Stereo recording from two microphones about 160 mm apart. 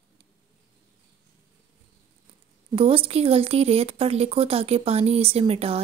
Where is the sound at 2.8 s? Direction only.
35° right (ahead or behind).